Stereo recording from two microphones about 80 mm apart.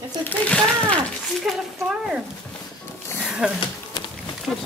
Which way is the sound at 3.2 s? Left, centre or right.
Centre.